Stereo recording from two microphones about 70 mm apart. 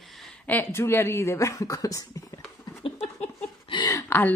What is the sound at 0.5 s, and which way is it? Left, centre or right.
Speech, left.